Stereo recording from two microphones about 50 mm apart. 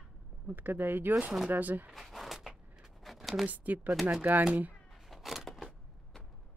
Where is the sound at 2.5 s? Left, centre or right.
Centre.